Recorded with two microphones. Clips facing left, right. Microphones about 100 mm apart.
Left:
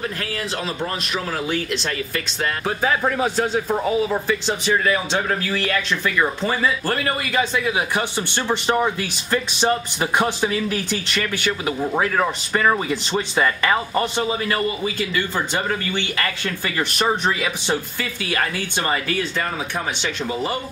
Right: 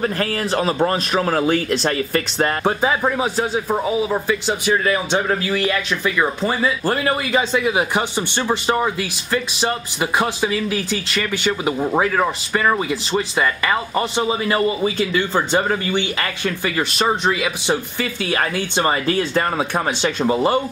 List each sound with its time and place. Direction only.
0.0 s speech: 50° right (ahead or behind)
3.0 s a man's voice: 15° right (ahead or behind)
11.4 s a man's voice: 20° right (ahead or behind)
14.1 s a man's voice: 20° right (ahead or behind)
17.1 s a man's voice: 5° right (ahead or behind)
18.3 s speech: 30° right (ahead or behind)